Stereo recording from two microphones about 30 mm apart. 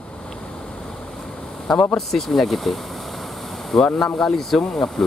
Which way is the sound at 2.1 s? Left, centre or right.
Centre.